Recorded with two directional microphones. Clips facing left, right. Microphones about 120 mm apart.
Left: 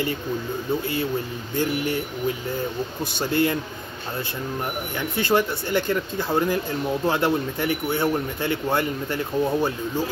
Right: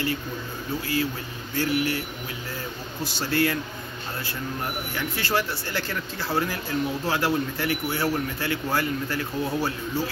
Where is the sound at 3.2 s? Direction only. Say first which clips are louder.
Left 3 dB; 20° left (ahead or behind).